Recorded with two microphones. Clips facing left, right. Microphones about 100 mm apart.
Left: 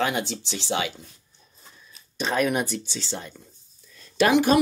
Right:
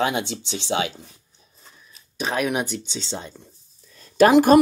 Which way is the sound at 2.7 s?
20° right (ahead or behind).